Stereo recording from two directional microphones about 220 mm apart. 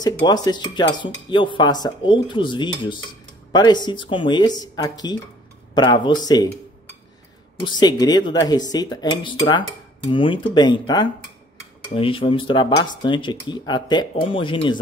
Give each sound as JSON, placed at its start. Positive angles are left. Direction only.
{"t": 0.2, "sound": "speech", "side_deg": 20}
{"t": 7.6, "sound": "speech", "side_deg": 20}